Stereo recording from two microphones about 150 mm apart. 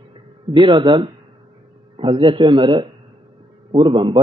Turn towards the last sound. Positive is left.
turn(degrees=-35)  # may be behind; listen again after turning